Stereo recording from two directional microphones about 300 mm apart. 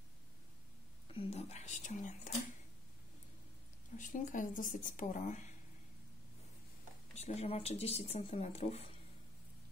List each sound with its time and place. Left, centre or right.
1.1 s speech: left
4.0 s speech: left
7.2 s speech: left